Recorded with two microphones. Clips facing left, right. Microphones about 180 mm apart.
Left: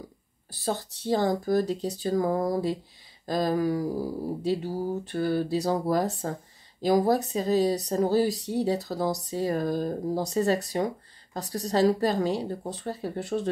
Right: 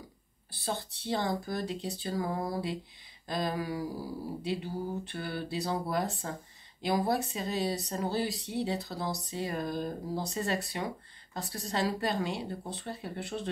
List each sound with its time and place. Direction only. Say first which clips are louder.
0.5 s speech: left 6 dB; 40° left (ahead or behind)